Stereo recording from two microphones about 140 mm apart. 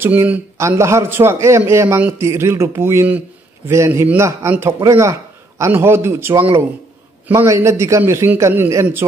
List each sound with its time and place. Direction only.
0.0 s speech: 15° right (ahead or behind)